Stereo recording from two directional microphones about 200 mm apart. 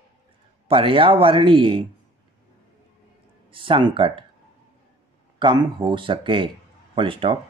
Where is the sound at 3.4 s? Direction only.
25° right (ahead or behind).